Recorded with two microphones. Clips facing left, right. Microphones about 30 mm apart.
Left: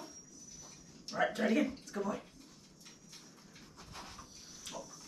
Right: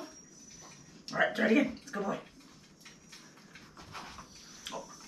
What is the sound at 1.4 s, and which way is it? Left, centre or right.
Speech, right.